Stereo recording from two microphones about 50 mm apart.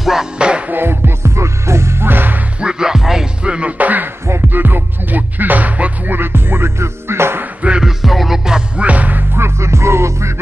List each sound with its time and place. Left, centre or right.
0.0 s music: centre
0.4 s music: centre
0.7 s music: right
2.0 s music: right
2.6 s music: centre
3.4 s music: right
3.7 s music: right
6.1 s music: right
7.8 s music: centre
8.7 s music: right
9.3 s music: right